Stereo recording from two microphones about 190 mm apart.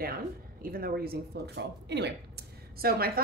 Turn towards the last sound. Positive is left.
turn(degrees=-55)  # may be behind; listen again after turning